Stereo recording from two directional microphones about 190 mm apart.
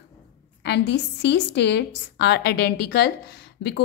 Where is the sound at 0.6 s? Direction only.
65° left (ahead or behind).